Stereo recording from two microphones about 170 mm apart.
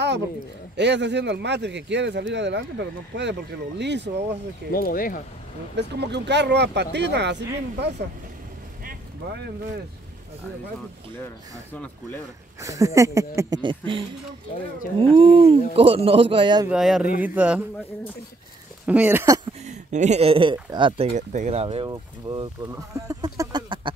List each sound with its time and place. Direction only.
0.7 s speech: 90° right
4.7 s speech: 55° left (ahead or behind)
5.8 s speech: 85° right
12.5 s speech: 20° right (ahead or behind)
16.6 s speech: 5° right (ahead or behind)
18.9 s speech: 10° right (ahead or behind)
19.6 s speech: 45° right (ahead or behind)
21.1 s speech: 45° right (ahead or behind); by 23.9 s 25° right (ahead or behind)